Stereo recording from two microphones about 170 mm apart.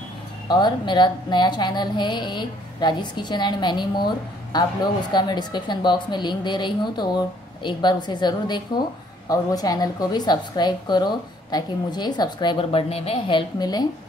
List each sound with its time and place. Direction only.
0.5 s a woman's voice: 25° left (ahead or behind)